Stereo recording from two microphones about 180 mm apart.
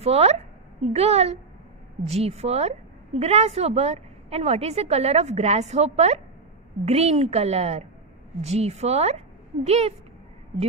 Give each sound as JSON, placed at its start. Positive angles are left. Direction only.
{"t": 0.0, "sound": "a woman's voice", "side_deg": -35}